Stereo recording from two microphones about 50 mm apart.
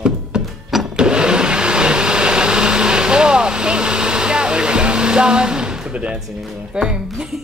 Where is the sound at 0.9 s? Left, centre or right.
Centre.